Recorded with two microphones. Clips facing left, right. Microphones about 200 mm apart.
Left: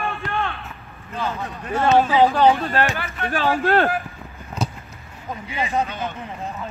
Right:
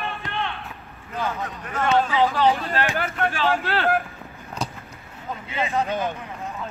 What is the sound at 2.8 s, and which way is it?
Speech, 50° left (ahead or behind).